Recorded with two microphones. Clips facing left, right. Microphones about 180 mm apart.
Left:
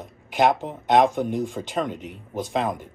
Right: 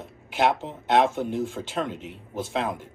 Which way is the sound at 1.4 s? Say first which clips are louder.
Left 2 dB; centre (ahead or behind).